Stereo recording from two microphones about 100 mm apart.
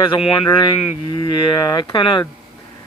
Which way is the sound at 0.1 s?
65° left (ahead or behind).